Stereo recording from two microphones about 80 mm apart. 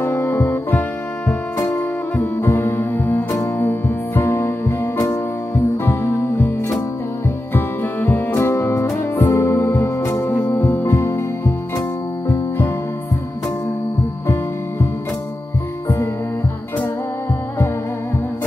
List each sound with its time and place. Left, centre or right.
0.0 s music: left
7.5 s music: left
8.4 s music: left
9.1 s music: left
10.3 s music: centre
10.6 s music: left
14.2 s music: left